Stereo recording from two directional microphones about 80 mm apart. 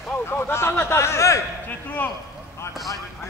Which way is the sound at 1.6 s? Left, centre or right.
Left.